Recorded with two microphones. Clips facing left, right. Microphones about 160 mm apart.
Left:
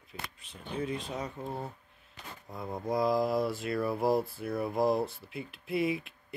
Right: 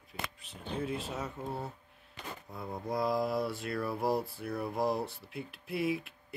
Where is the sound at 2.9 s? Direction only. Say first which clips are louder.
Left 3 dB; centre (ahead or behind).